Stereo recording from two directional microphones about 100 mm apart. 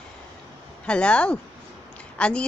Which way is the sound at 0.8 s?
10° left (ahead or behind).